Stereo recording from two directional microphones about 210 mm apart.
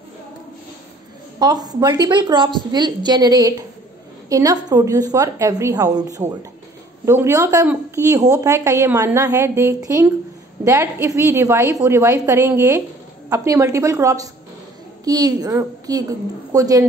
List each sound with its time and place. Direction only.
1.4 s a woman's voice: 20° right (ahead or behind)